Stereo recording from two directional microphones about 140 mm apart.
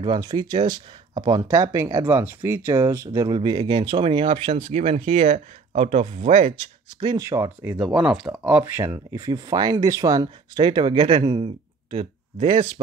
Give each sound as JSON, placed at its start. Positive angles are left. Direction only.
{"t": 0.0, "sound": "speech", "side_deg": -30}
{"t": 3.3, "sound": "speech", "side_deg": -35}
{"t": 7.2, "sound": "speech", "side_deg": -20}
{"t": 7.8, "sound": "speech", "side_deg": -5}